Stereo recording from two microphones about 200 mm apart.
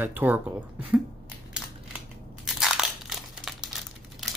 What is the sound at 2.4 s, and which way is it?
Crumpling, centre (ahead or behind).